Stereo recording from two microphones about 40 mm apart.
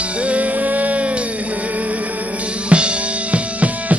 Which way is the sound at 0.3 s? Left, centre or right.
Right.